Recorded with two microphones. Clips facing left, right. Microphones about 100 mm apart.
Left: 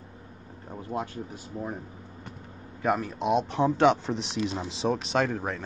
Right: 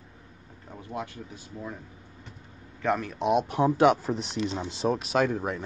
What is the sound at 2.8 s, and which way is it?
Speech, 10° left (ahead or behind).